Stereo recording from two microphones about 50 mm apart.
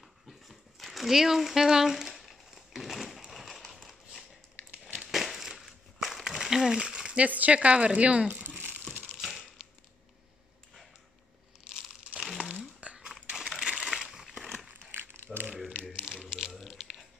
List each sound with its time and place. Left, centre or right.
0.0 s a sound: centre
7.2 s speech: right
8.5 s crumpling: right
9.2 s a sound: centre
11.7 s crumpling: centre
12.2 s crumpling: centre
15.0 s crumpling: right
15.9 s a sound: centre
16.5 s biting: centre